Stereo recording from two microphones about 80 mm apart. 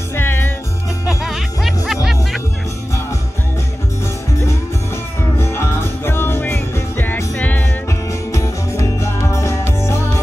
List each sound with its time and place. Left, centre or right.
0.1 s music: left
1.0 s music: centre
5.4 s music: left
8.1 s music: left